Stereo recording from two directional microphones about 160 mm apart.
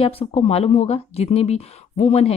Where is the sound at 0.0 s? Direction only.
35° left (ahead or behind).